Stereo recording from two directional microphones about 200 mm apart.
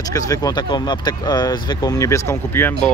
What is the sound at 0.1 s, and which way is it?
Speech, 15° left (ahead or behind).